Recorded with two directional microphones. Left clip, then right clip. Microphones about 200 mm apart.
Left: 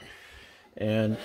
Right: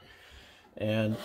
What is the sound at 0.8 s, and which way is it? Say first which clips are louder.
Speech: left 3 dB; 25° left (ahead or behind).